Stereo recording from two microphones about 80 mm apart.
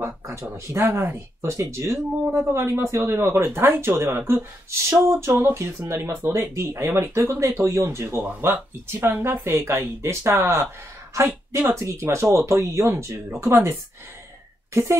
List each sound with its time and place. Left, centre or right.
0.0 s speech: right
11.7 s a woman's voice: right